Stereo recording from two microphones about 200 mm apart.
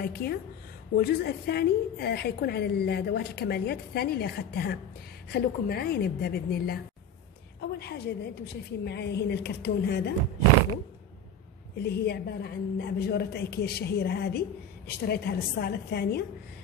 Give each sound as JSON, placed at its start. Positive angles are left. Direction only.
{"t": 0.0, "sound": "a woman's voice", "side_deg": 50}
{"t": 11.8, "sound": "a woman's voice", "side_deg": 55}